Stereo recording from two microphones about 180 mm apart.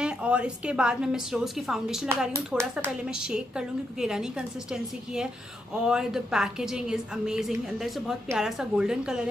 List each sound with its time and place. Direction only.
0.0 s a woman's voice: 5° right (ahead or behind)
2.0 s speech: 15° right (ahead or behind)
2.7 s a woman's voice: 5° right (ahead or behind)